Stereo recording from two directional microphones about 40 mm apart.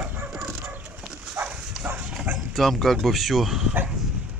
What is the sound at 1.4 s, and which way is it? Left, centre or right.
Dog, right.